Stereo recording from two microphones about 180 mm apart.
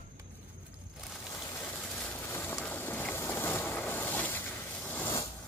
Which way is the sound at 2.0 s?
10° left (ahead or behind).